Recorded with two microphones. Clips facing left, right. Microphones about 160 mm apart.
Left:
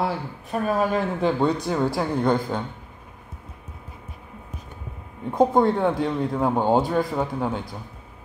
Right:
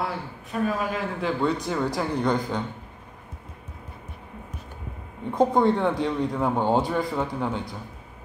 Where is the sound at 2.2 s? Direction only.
5° left (ahead or behind).